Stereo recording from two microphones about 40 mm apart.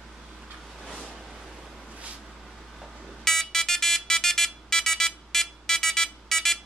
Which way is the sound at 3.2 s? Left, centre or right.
Centre.